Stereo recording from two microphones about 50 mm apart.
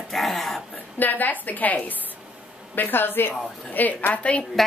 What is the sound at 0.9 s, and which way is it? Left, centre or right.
A woman's voice, left.